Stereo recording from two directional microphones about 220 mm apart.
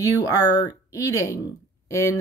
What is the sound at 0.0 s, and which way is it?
Speech, 15° left (ahead or behind).